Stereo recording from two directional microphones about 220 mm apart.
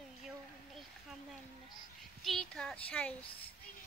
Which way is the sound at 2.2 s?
Centre (ahead or behind).